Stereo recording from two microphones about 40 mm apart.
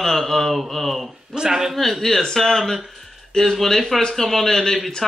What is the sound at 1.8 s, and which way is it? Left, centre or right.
Speech, centre.